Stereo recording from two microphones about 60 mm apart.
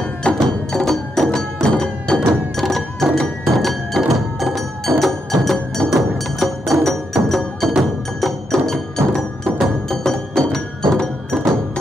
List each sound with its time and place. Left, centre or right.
0.2 s music: centre